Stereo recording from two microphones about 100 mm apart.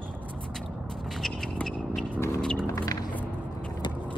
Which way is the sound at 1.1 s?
5° left (ahead or behind).